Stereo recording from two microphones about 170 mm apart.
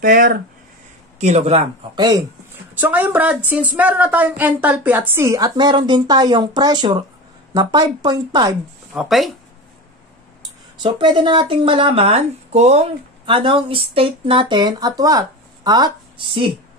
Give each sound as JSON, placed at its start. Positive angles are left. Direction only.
{"t": 0.0, "sound": "speech", "side_deg": -55}
{"t": 1.2, "sound": "speech", "side_deg": -40}
{"t": 2.7, "sound": "speech", "side_deg": -10}
{"t": 8.9, "sound": "speech", "side_deg": 0}
{"t": 10.8, "sound": "speech", "side_deg": -30}